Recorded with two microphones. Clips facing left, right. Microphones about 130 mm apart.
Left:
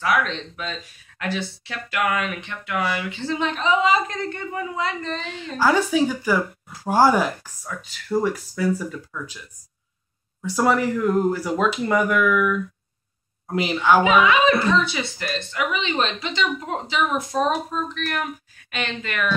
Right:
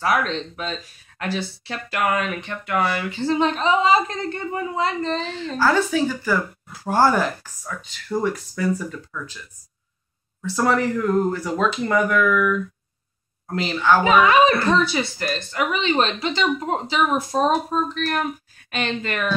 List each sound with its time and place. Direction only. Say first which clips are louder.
0.0 s speech: right 1 dB; 35° right (ahead or behind)
5.6 s speech: left 1 dB; 10° left (ahead or behind)
10.4 s speech: even; 10° left (ahead or behind)
14.0 s speech: right 2 dB; 40° right (ahead or behind)